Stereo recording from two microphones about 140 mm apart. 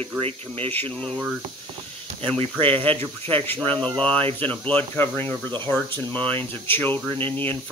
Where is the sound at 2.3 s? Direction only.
40° right (ahead or behind).